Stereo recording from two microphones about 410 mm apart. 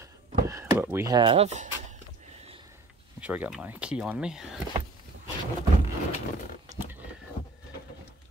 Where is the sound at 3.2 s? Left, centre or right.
Centre.